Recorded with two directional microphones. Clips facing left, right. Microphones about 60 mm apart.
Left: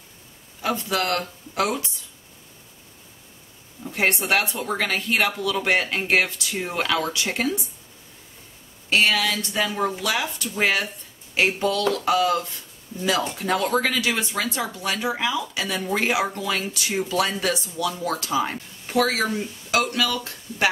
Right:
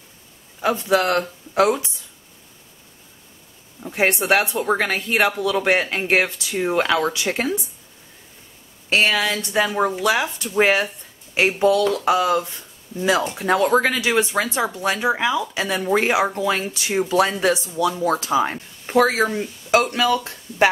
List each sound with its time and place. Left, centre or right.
0.6 s speech: right
3.8 s speech: right
8.9 s speech: right; by 13.5 s centre
13.5 s speech: right